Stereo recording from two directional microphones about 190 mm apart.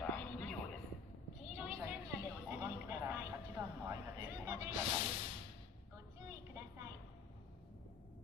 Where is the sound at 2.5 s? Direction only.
10° right (ahead or behind).